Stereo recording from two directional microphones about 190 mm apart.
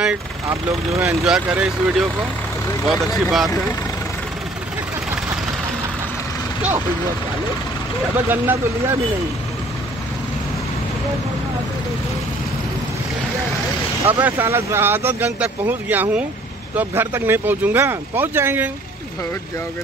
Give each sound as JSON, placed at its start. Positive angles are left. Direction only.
{"t": 0.5, "sound": "speech", "side_deg": -15}
{"t": 1.2, "sound": "speech", "side_deg": -5}
{"t": 3.2, "sound": "speech", "side_deg": 0}
{"t": 8.3, "sound": "speech", "side_deg": -10}
{"t": 14.0, "sound": "speech", "side_deg": -10}